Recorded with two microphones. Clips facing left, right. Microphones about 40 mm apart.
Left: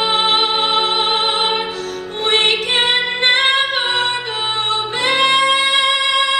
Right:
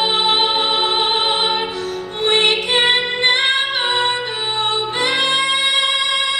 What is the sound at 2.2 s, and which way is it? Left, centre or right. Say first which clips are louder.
Music: even; left.